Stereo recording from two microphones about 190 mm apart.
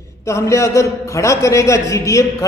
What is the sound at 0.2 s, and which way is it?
A man's voice, 15° left (ahead or behind).